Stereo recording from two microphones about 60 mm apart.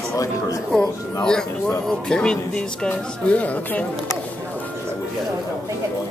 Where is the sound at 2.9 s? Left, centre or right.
Left.